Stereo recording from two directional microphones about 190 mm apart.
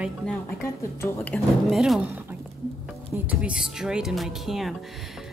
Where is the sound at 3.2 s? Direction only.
5° right (ahead or behind).